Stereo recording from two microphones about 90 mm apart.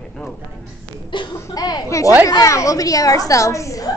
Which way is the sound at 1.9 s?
35° left (ahead or behind).